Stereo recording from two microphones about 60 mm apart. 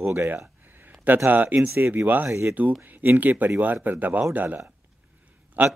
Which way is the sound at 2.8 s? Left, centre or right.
Right.